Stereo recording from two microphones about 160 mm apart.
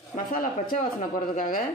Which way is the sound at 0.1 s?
60° left (ahead or behind).